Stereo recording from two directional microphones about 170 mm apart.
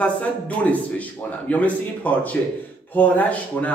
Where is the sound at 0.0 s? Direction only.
10° left (ahead or behind).